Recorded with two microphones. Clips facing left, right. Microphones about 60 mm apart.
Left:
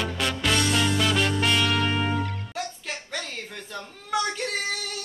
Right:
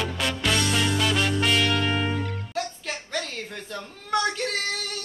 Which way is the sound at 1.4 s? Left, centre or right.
Centre.